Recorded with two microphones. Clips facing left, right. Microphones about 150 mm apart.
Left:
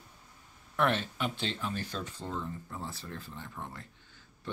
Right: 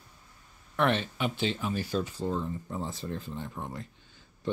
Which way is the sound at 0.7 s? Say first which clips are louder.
Right 2 dB; centre (ahead or behind).